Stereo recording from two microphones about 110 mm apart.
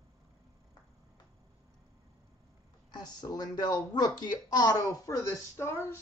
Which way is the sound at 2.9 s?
35° left (ahead or behind).